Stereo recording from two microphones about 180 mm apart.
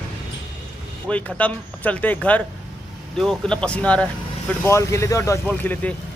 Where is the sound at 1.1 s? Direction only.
5° left (ahead or behind).